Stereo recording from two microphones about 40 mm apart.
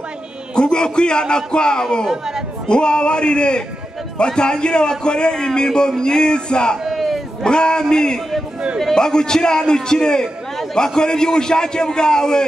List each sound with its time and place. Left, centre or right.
0.6 s a man's voice: left
2.0 s speech: centre
2.7 s a man's voice: left
6.8 s a sound: centre
7.4 s a man's voice: left